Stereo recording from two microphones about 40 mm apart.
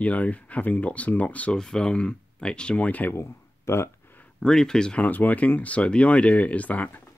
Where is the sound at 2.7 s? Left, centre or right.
Left.